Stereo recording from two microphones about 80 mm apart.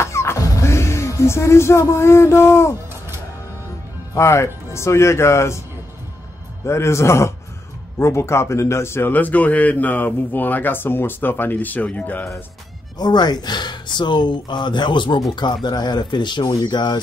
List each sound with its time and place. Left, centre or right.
0.0 s music: left
4.1 s speech: left
6.6 s a man's voice: left; by 12.3 s centre
12.9 s speech: left
15.3 s speech: left